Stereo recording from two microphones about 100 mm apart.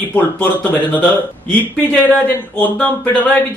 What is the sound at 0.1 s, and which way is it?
Speech, 15° left (ahead or behind).